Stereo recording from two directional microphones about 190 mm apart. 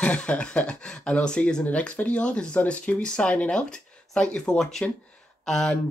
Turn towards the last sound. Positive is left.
turn(degrees=5)  # may be behind; listen again after turning